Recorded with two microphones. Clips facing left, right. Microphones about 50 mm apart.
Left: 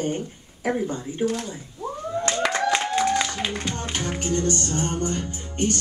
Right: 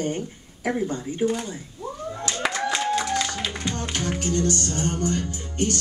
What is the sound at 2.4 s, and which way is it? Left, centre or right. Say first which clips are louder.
Clapping: even; centre.